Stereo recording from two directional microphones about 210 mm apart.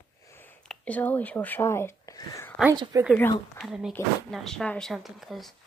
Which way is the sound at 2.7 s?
20° right (ahead or behind).